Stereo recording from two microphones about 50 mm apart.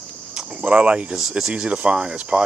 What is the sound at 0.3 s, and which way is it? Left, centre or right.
Cricket, centre.